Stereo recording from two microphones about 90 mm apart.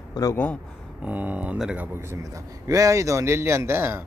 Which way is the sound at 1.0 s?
15° right (ahead or behind).